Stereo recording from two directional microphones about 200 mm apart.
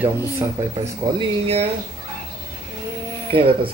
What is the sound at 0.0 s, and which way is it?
Speech, 15° right (ahead or behind).